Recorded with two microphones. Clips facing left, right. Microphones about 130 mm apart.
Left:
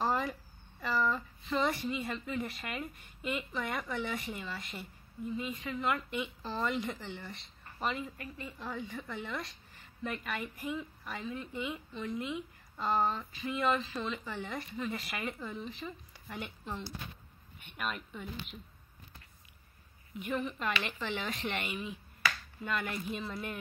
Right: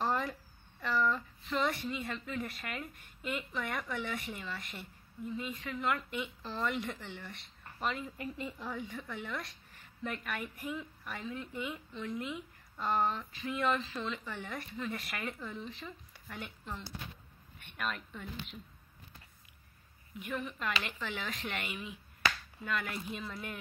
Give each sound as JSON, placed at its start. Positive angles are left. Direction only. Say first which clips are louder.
{"t": 0.0, "sound": "speech", "louder": "left 1 dB", "side_deg": 5}
{"t": 8.2, "sound": "a woman's voice", "louder": "right 4 dB", "side_deg": -20}
{"t": 8.5, "sound": "a woman's voice", "louder": "left 1 dB", "side_deg": -5}
{"t": 20.2, "sound": "a woman's voice", "louder": "left 4 dB", "side_deg": 0}